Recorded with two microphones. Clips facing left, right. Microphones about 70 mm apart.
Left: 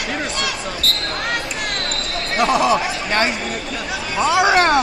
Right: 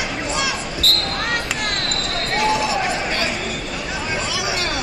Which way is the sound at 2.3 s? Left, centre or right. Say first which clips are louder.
Left 4 dB; left.